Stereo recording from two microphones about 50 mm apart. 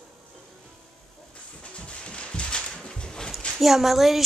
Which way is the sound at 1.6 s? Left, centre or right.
Left.